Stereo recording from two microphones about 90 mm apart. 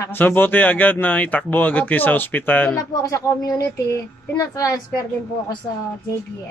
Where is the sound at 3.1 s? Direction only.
40° left (ahead or behind).